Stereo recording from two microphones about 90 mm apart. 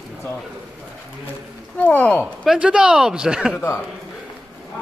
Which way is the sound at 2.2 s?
10° right (ahead or behind).